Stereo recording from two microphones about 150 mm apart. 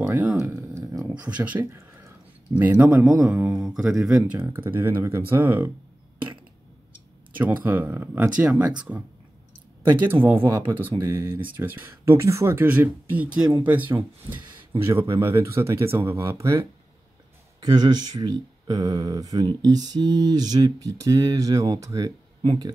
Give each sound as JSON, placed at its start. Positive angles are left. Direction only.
{"t": 0.0, "sound": "a sound", "side_deg": -10}
{"t": 2.8, "sound": "speech", "side_deg": -10}
{"t": 7.3, "sound": "speech", "side_deg": -10}
{"t": 10.1, "sound": "speech", "side_deg": -10}